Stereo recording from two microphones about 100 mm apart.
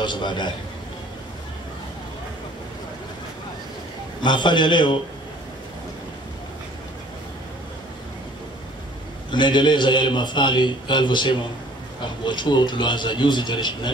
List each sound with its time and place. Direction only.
0.0 s a man's voice: 50° left (ahead or behind)
4.2 s a man's voice: 50° left (ahead or behind)
9.3 s a man's voice: 50° left (ahead or behind)